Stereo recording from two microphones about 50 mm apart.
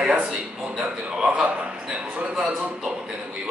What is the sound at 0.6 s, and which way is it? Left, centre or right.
A man's voice, centre.